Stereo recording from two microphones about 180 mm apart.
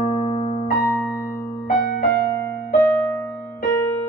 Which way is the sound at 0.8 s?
10° left (ahead or behind).